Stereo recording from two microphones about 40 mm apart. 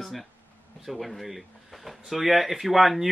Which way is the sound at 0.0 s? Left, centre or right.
Centre.